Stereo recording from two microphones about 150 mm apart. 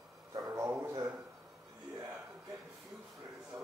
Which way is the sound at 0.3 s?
25° right (ahead or behind).